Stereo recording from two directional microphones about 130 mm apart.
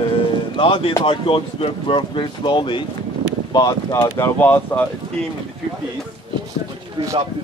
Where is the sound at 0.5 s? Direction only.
45° left (ahead or behind).